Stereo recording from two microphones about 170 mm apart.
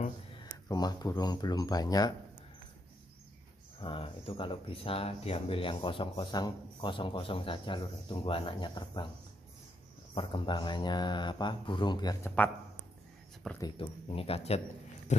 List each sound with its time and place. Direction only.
0.7 s speech: 25° left (ahead or behind)
3.8 s speech: 30° left (ahead or behind)
10.1 s speech: 30° left (ahead or behind)
13.6 s speech: 30° left (ahead or behind)